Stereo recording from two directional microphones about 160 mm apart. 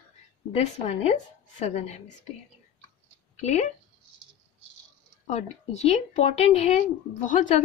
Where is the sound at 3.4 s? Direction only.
45° left (ahead or behind).